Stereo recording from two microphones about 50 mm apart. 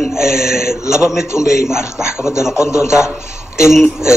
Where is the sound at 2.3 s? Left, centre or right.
Left.